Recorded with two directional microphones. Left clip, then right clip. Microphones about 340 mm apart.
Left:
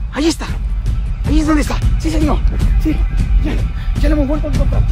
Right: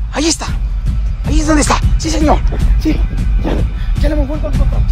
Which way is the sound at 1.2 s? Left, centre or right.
Centre.